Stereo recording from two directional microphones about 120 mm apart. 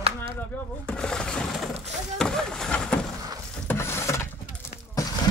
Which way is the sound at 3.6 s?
20° left (ahead or behind).